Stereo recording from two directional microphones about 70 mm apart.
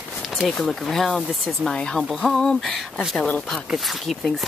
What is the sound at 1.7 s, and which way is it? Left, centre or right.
Speech, centre.